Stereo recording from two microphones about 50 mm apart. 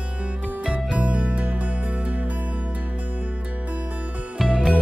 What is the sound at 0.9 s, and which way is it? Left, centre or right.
Music, right.